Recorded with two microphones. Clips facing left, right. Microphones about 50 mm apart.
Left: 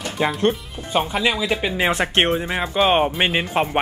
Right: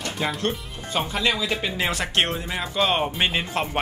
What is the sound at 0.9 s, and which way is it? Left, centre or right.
Speech, centre.